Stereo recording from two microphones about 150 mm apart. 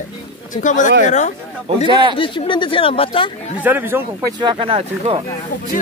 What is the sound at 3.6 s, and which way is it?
Speech, 10° right (ahead or behind).